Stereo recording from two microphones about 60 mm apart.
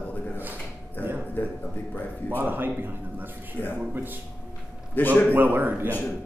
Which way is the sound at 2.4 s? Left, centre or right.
Right.